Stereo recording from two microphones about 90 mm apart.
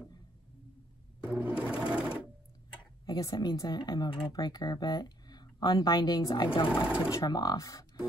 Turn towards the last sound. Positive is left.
turn(degrees=40)  # may be behind; listen again after turning